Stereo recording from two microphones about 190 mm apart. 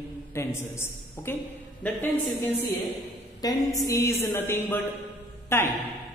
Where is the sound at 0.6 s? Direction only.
15° left (ahead or behind).